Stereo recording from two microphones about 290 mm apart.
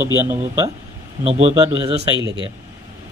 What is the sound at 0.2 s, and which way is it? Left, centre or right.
Speech, centre.